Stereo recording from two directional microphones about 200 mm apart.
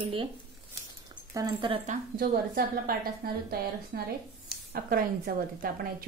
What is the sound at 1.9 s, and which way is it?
A woman's voice, 50° right (ahead or behind).